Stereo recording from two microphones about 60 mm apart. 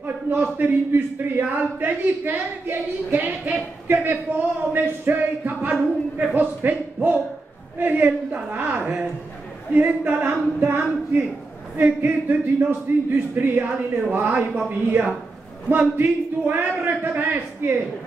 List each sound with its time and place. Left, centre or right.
0.0 s a man's voice: right
6.1 s a sound: right
7.8 s a man's voice: right